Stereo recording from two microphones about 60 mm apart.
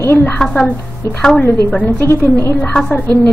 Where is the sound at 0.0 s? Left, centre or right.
Left.